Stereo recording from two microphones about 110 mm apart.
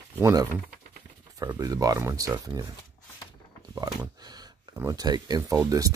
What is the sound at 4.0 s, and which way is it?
Speech, 35° right (ahead or behind).